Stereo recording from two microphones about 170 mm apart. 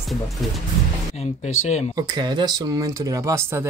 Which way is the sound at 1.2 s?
40° left (ahead or behind).